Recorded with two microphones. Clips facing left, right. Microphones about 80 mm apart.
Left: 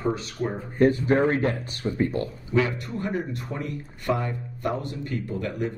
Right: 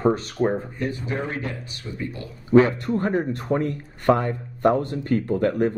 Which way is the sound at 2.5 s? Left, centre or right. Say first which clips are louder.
Right 10 dB; right.